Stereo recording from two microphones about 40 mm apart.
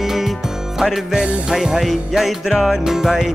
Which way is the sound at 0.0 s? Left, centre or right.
Centre.